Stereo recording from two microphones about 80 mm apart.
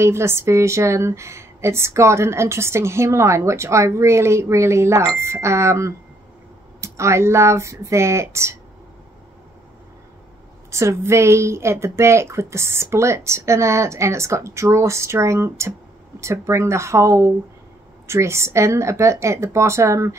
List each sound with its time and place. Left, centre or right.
0.0 s a woman's voice: right
10.7 s a woman's voice: right